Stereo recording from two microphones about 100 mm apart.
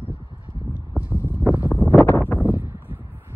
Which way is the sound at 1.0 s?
25° left (ahead or behind).